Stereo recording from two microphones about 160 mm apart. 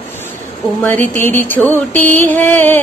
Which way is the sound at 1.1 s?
15° left (ahead or behind).